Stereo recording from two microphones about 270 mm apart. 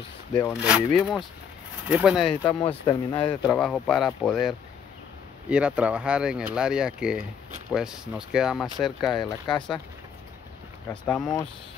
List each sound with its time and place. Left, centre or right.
0.5 s speech: centre
2.7 s speech: centre
3.4 s speech: centre
9.2 s speech: centre
10.9 s speech: centre